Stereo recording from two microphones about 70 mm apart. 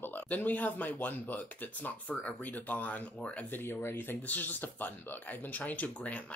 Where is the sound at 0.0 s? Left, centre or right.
Left.